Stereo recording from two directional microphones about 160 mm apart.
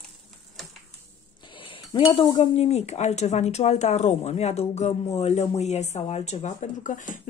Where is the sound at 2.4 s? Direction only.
40° left (ahead or behind).